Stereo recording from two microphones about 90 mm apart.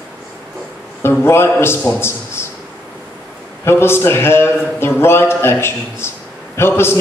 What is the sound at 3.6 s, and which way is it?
Speech, 30° left (ahead or behind).